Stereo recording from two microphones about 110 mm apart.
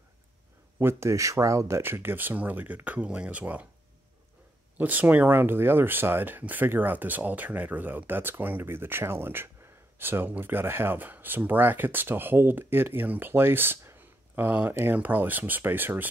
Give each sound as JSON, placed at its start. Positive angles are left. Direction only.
{"t": 0.7, "sound": "speech", "side_deg": -20}
{"t": 4.7, "sound": "speech", "side_deg": -15}